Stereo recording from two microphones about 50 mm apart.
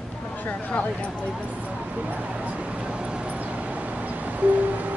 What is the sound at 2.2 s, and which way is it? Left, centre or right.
Vehicle, right.